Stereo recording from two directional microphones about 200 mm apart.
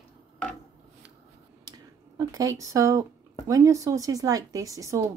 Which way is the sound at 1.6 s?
20° right (ahead or behind).